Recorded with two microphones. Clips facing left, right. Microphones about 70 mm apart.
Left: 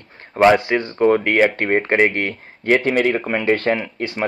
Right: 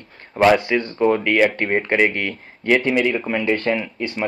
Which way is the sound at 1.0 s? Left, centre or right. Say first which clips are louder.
Left 2 dB; left.